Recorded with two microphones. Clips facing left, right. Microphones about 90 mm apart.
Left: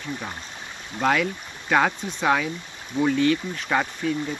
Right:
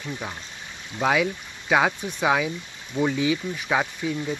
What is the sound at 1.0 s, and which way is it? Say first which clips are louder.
Speech: even; 5° right (ahead or behind).